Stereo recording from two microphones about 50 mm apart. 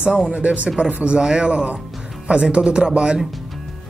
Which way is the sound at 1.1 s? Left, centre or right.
Centre.